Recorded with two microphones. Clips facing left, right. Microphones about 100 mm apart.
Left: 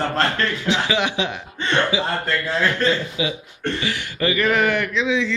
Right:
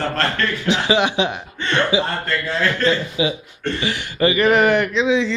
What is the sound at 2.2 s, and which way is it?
Speech, 10° left (ahead or behind).